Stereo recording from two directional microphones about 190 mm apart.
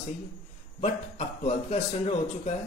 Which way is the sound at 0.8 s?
35° left (ahead or behind).